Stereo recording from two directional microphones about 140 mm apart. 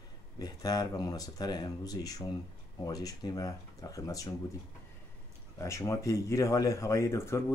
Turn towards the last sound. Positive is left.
turn(degrees=20)  # may be behind; listen again after turning